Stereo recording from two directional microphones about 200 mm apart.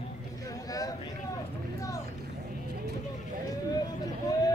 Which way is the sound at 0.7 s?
20° left (ahead or behind).